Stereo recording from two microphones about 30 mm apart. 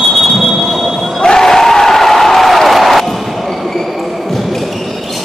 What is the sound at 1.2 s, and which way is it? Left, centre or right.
Applause, centre.